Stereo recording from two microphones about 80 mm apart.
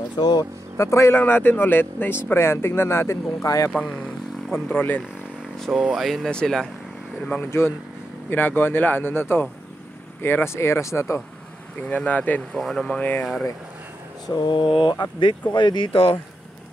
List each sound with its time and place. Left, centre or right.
0.1 s speech: left
0.7 s speech: left
1.2 s speech: left
3.4 s speech: left
3.7 s speech: centre
5.7 s speech: centre
7.5 s speech: left
11.8 s speech: centre
12.5 s speech: centre
14.2 s speech: left